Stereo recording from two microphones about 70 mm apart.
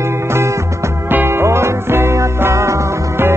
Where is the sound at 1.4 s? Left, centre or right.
Right.